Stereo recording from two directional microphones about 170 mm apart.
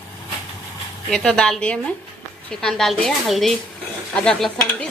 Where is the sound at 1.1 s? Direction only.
5° left (ahead or behind).